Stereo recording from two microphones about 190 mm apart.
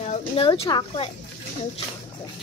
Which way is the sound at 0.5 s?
25° left (ahead or behind).